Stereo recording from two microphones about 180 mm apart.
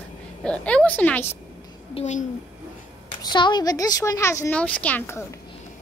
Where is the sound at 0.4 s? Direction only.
5° left (ahead or behind).